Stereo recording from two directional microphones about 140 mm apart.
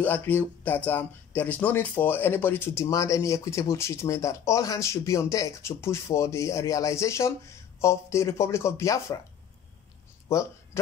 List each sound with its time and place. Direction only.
0.0 s speech: 15° left (ahead or behind)
10.3 s speech: 20° left (ahead or behind)